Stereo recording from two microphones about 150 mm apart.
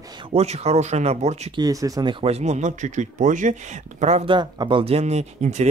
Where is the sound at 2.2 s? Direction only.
45° right (ahead or behind).